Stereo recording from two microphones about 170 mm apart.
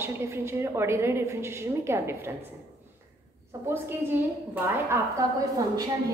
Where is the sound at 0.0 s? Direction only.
15° right (ahead or behind).